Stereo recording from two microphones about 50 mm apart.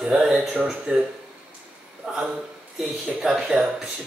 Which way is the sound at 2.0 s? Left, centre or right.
Centre.